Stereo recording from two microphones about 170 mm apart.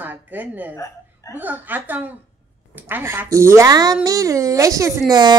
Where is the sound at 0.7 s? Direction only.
15° left (ahead or behind).